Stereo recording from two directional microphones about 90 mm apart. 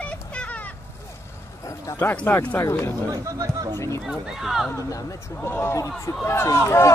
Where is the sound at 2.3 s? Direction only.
25° left (ahead or behind).